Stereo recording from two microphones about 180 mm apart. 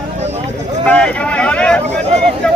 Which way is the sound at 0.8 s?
5° left (ahead or behind).